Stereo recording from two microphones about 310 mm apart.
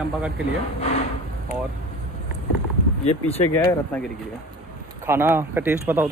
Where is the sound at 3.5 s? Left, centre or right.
Centre.